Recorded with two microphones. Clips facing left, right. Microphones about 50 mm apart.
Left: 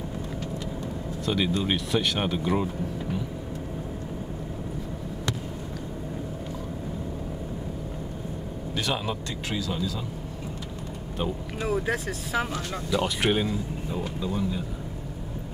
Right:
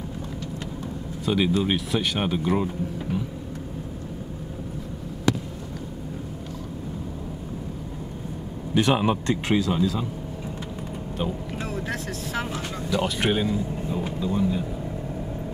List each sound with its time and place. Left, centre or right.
1.2 s speech: centre
8.7 s speech: right
11.6 s speech: centre